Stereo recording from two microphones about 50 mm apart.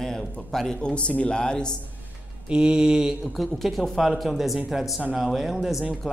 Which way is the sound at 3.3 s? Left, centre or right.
Centre.